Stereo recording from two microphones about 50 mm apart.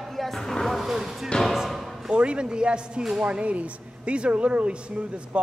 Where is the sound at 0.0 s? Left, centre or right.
Centre.